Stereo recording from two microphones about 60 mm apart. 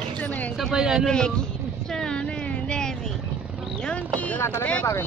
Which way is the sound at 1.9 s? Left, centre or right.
Centre.